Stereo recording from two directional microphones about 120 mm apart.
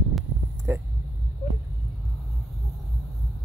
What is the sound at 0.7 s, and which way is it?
Speech, 20° right (ahead or behind).